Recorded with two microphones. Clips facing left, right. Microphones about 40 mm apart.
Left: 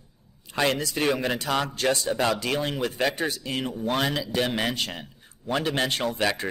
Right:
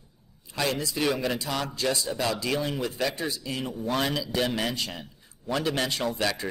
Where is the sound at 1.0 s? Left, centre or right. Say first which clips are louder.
Left 2 dB; left.